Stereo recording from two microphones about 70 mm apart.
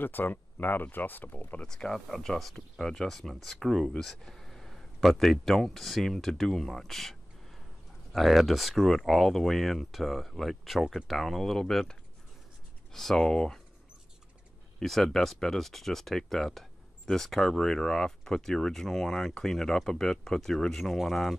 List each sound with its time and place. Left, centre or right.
0.0 s speech: left
1.7 s speech: centre
14.8 s speech: centre